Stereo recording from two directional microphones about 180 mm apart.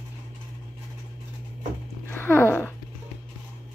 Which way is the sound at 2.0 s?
10° left (ahead or behind).